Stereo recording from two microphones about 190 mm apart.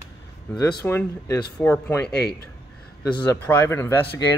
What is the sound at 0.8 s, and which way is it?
Speech, 10° left (ahead or behind).